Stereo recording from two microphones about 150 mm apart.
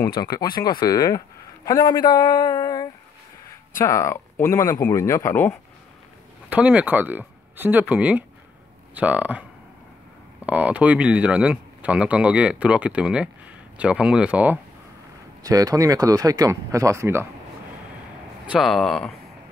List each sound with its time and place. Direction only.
0.0 s speech: 25° left (ahead or behind)
6.5 s speech: 10° right (ahead or behind)
10.4 s speech: 10° right (ahead or behind)
15.4 s speech: 25° right (ahead or behind)
18.5 s speech: centre (ahead or behind)